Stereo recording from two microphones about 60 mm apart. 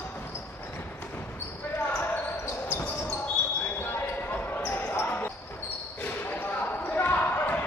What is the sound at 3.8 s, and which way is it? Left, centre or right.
Basketball bounce, left.